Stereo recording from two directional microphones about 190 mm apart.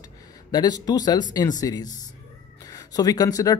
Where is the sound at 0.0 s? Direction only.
20° left (ahead or behind).